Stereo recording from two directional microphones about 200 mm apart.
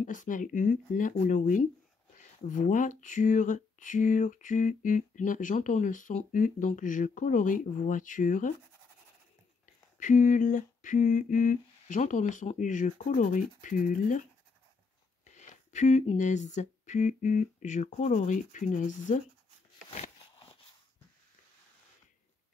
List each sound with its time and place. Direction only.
0.0 s speech: 40° left (ahead or behind)
9.9 s speech: 40° left (ahead or behind)
15.2 s speech: 35° left (ahead or behind)
19.9 s a sound: 30° left (ahead or behind)